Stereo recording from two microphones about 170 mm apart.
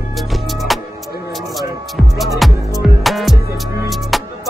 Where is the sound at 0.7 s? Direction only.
Centre (ahead or behind).